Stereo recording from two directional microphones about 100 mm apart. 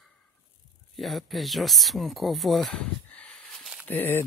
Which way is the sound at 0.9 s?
Centre (ahead or behind).